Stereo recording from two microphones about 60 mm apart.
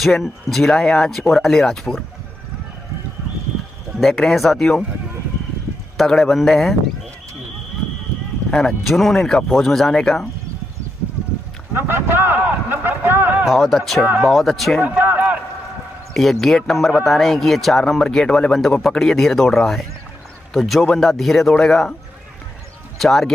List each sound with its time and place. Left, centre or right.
0.0 s speech: centre
3.9 s speech: centre
5.9 s speech: centre
8.5 s speech: centre
11.7 s a sound: right
13.5 s speech: centre
14.8 s a sound: right
16.1 s speech: centre
22.9 s speech: centre